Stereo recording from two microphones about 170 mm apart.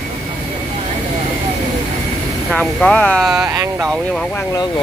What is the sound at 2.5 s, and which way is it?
Speech, 5° left (ahead or behind).